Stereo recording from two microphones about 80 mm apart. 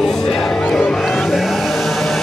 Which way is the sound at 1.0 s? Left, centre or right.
Centre.